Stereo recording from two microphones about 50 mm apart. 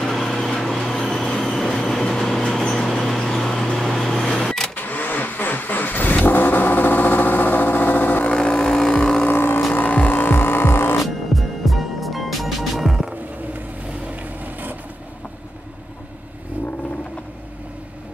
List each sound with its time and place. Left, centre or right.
0.0 s vehicle: centre
3.0 s a sound: centre
4.7 s vehicle: left
8.3 s vehicle: left
9.3 s vehicle: left
9.7 s vehicle: left
11.3 s music: centre
14.4 s vehicle: right